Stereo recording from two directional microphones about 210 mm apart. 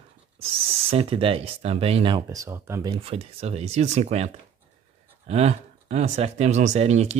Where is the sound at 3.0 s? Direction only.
30° right (ahead or behind).